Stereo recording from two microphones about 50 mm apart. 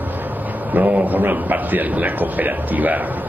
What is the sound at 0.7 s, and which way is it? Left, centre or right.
Speech, right.